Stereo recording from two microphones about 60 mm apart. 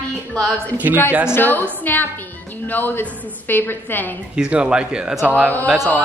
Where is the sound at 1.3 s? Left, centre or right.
Left.